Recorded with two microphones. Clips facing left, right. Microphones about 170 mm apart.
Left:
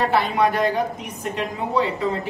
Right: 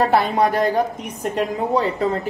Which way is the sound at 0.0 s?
45° right (ahead or behind).